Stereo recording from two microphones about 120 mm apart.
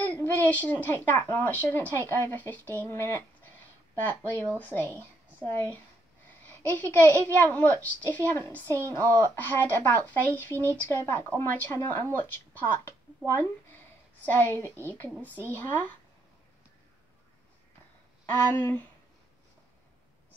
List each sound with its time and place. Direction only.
0.0 s a woman's voice: 15° left (ahead or behind)
13.3 s speech: 20° left (ahead or behind)
18.3 s speech: 15° left (ahead or behind)